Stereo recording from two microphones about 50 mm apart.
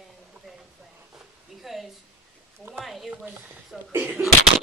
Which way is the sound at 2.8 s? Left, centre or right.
Centre.